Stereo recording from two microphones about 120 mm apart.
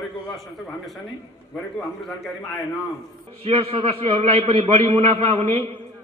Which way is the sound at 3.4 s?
55° right (ahead or behind).